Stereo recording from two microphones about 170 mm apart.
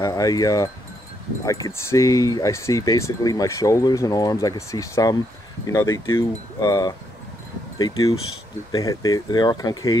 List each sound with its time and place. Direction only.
0.0 s speech: 20° left (ahead or behind)